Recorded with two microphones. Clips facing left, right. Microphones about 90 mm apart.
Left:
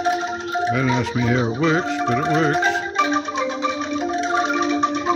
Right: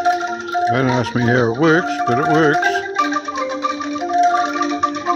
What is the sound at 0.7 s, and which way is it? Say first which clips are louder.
Speech: right 4 dB; 50° right (ahead or behind).